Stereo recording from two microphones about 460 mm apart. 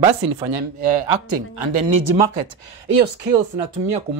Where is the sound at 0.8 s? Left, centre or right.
Right.